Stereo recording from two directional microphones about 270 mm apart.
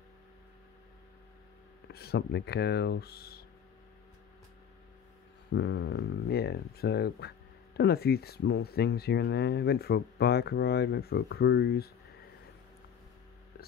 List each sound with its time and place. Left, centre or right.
1.9 s speech: left
5.5 s speech: left